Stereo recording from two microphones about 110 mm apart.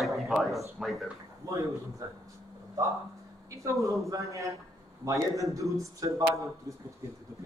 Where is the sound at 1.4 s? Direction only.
30° right (ahead or behind).